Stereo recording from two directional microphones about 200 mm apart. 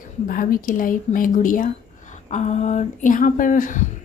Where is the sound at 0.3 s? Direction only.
45° left (ahead or behind).